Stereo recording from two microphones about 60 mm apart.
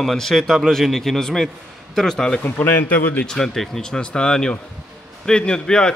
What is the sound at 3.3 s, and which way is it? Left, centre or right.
Speech, centre.